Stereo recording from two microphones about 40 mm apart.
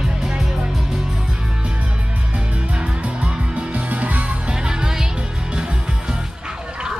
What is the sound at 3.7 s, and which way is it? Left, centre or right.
Music, right.